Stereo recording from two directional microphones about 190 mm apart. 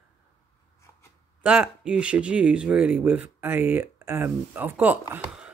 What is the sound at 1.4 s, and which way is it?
Speech, 5° right (ahead or behind).